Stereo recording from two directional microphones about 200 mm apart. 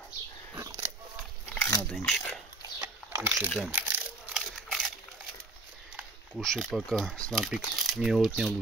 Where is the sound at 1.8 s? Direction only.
Centre (ahead or behind).